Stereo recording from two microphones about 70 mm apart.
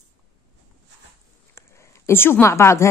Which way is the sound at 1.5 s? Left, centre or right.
Left.